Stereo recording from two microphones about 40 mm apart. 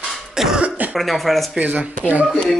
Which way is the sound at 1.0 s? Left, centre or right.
Centre.